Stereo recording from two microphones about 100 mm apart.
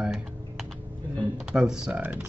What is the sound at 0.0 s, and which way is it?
Computer keyboard, centre (ahead or behind).